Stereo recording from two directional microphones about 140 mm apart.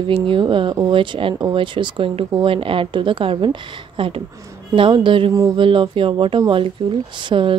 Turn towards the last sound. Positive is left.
turn(degrees=-35)  # may be behind; listen again after turning